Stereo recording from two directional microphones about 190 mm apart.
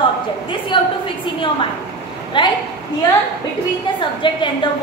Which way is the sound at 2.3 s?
25° left (ahead or behind).